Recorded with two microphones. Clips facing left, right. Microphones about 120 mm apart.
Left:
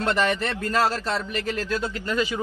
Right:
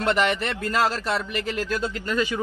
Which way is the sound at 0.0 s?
15° right (ahead or behind).